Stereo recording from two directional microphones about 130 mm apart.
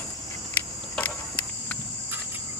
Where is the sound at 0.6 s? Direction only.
15° left (ahead or behind).